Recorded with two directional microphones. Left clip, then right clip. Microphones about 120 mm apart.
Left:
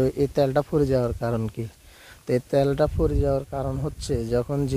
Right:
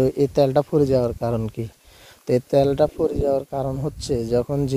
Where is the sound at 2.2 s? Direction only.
40° right (ahead or behind).